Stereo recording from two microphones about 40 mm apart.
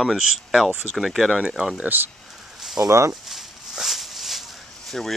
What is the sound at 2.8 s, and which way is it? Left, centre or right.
Speech, right.